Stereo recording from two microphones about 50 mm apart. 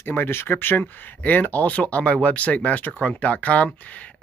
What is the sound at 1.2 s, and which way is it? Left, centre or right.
Speech, left.